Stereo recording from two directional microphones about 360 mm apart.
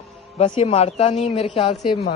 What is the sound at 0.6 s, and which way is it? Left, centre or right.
A man's voice, centre.